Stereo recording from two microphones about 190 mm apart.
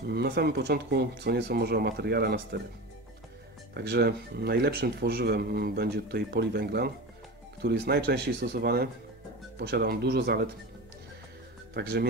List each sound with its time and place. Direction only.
0.1 s speech: 55° right (ahead or behind)
3.7 s speech: 55° right (ahead or behind)
11.7 s speech: 55° right (ahead or behind)